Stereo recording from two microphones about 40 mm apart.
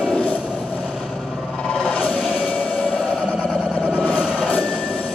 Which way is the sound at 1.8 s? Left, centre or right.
Left.